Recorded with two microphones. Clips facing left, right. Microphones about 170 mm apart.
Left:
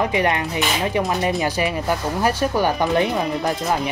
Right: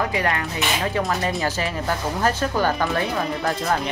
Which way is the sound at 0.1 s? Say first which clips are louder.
Left 4 dB; 20° left (ahead or behind).